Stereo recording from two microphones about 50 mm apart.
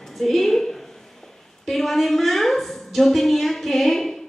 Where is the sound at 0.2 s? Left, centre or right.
Centre.